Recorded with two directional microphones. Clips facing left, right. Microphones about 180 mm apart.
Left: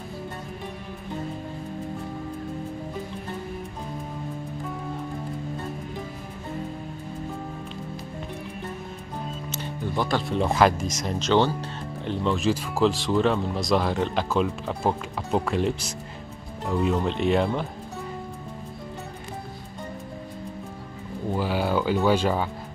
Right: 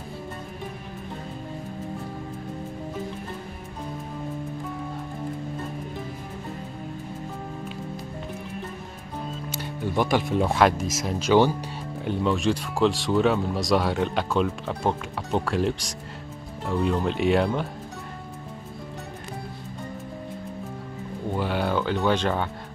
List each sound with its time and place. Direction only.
9.5 s music: 15° right (ahead or behind)
10.3 s speech: centre (ahead or behind)
21.3 s a sound: 5° left (ahead or behind)